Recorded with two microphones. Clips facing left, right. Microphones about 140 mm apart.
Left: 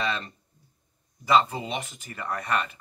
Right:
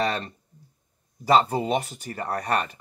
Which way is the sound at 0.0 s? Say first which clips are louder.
Right 4 dB; 40° right (ahead or behind).